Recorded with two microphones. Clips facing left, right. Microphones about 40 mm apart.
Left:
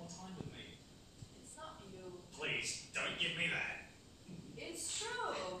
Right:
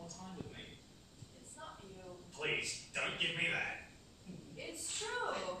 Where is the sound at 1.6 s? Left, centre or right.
Centre.